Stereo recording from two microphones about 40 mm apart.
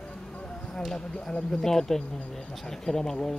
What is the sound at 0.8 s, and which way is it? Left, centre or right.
Speech, centre.